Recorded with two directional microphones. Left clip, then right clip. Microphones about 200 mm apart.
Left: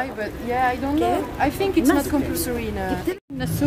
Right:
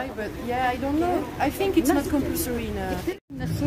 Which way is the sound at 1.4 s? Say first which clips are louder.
Left 1 dB; 10° left (ahead or behind).